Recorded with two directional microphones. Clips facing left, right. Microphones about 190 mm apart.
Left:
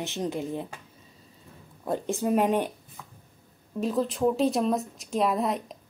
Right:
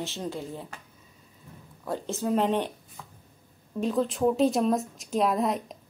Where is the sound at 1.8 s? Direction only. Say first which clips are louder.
Left 3 dB; 15° left (ahead or behind).